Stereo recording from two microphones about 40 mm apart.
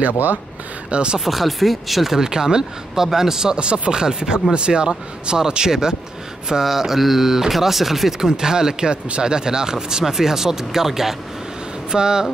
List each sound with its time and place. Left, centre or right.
0.8 s speech: right
1.2 s speech: centre
3.5 s speech: right